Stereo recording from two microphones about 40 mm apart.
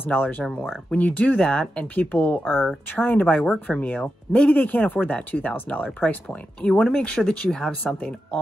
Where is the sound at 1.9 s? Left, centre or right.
Left.